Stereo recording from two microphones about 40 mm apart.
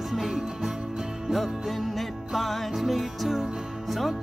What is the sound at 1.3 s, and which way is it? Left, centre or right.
Music, centre.